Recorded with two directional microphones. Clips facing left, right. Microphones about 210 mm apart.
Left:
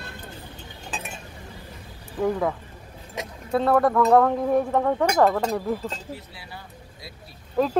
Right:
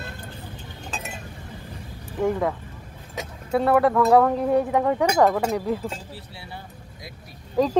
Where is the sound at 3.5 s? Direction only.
5° right (ahead or behind).